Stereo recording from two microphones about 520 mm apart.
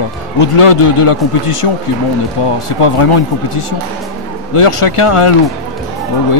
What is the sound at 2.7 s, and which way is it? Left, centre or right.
Speech, left.